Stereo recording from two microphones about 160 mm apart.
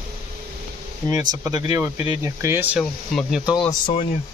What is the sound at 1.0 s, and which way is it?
Speech, 20° right (ahead or behind).